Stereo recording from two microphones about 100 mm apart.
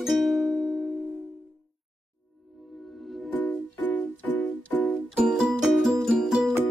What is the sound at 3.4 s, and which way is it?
Music, 20° left (ahead or behind).